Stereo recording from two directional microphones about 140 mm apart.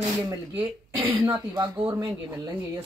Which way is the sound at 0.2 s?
25° right (ahead or behind).